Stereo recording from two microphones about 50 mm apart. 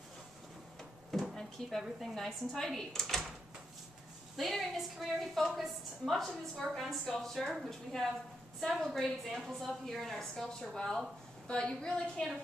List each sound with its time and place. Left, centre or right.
1.1 s drawer open or close: centre
1.8 s a woman's voice: centre
2.1 s a woman's voice: centre
4.4 s a woman's voice: centre
7.9 s a woman's voice: centre
8.6 s a woman's voice: centre
11.4 s a woman's voice: centre